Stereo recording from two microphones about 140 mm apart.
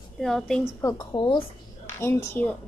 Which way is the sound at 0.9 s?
35° left (ahead or behind).